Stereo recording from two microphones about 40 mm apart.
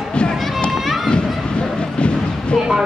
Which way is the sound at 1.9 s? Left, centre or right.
Left.